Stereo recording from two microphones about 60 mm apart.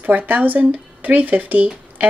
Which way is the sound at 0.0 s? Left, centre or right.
Right.